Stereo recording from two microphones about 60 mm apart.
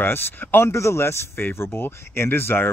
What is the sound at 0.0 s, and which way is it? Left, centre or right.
Speech, left.